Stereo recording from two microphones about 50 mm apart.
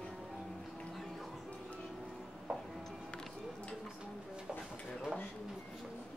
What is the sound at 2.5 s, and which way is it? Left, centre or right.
Music, right.